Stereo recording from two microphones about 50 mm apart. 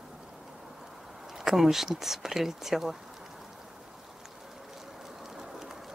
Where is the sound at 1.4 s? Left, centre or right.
Centre.